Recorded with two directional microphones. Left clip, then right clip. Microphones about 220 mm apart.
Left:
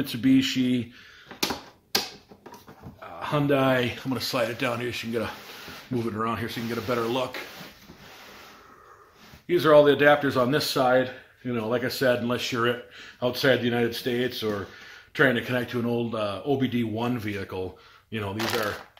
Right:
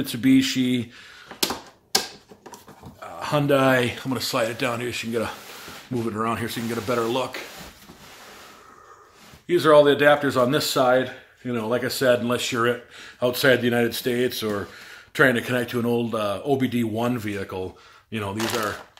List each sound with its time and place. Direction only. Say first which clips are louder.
0.0 s speech: right 3 dB; 20° right (ahead or behind)
1.3 s a sound: right 3 dB; 5° left (ahead or behind)
3.0 s speech: right 3 dB; 20° right (ahead or behind)
9.5 s speech: right 2 dB; 10° right (ahead or behind)